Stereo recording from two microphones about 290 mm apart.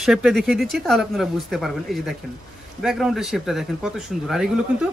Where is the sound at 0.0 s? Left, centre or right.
Centre.